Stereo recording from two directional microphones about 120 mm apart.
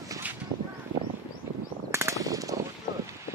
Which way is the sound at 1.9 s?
25° right (ahead or behind).